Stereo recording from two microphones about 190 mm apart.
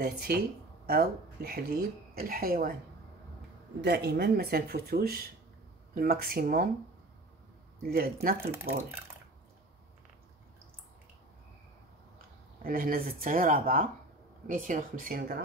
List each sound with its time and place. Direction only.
0.0 s speech: 55° right (ahead or behind)
3.8 s speech: 60° right (ahead or behind)
7.9 s speech: 50° right (ahead or behind)
12.6 s speech: 50° right (ahead or behind)